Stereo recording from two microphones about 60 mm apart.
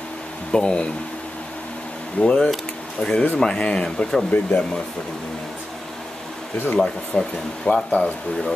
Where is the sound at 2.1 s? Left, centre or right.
Centre.